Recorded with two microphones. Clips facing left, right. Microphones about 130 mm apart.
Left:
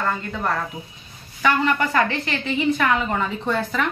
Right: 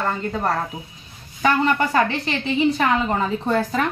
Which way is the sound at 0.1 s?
35° right (ahead or behind).